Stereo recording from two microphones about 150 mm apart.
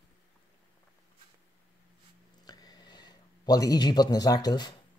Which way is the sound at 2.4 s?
25° left (ahead or behind).